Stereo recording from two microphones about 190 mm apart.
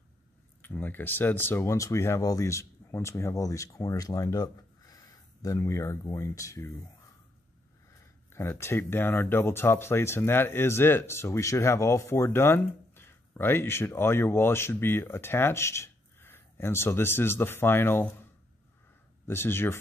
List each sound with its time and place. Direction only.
0.6 s speech: 10° left (ahead or behind)
8.3 s speech: 15° left (ahead or behind)
19.2 s speech: 10° left (ahead or behind)